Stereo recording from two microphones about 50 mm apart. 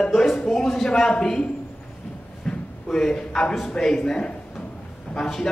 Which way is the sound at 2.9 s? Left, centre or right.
Centre.